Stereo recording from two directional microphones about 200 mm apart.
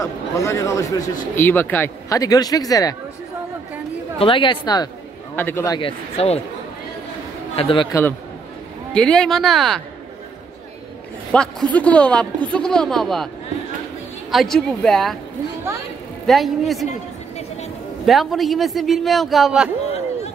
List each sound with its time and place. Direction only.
0.0 s speech: 15° left (ahead or behind)
4.2 s speech: 25° left (ahead or behind)
5.3 s speech: 10° left (ahead or behind); by 6.4 s 30° left (ahead or behind)
7.5 s speech: 25° left (ahead or behind)
8.9 s speech: 5° left (ahead or behind)
11.3 s speech: 5° left (ahead or behind)
14.3 s speech: centre (ahead or behind)
16.3 s speech: centre (ahead or behind)
18.0 s speech: centre (ahead or behind)